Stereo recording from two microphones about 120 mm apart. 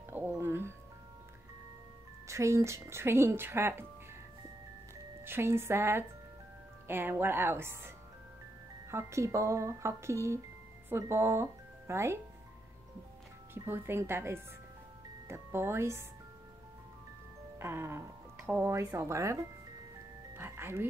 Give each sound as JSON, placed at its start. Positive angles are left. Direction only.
{"t": 0.1, "sound": "music", "side_deg": -20}
{"t": 2.2, "sound": "speech", "side_deg": -25}
{"t": 5.2, "sound": "speech", "side_deg": -20}
{"t": 8.9, "sound": "speech", "side_deg": -25}
{"t": 13.7, "sound": "speech", "side_deg": -20}
{"t": 17.6, "sound": "speech", "side_deg": -20}
{"t": 20.3, "sound": "music", "side_deg": -20}